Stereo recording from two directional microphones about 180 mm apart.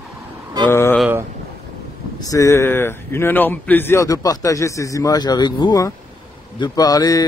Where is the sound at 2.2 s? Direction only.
20° left (ahead or behind).